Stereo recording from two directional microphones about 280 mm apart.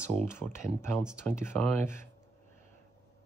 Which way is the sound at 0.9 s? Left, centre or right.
Centre.